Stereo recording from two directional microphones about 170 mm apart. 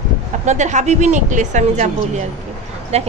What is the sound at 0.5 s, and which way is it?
A woman's voice, 45° right (ahead or behind).